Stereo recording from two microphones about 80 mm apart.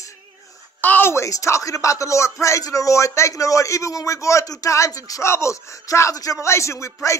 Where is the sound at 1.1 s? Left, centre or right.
Left.